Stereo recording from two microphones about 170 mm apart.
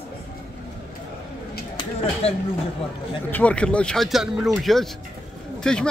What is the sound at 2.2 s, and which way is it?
Speech, 35° left (ahead or behind).